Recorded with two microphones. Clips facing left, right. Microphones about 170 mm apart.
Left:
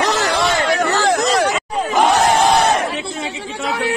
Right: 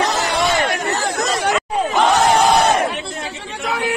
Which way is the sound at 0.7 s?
90° left.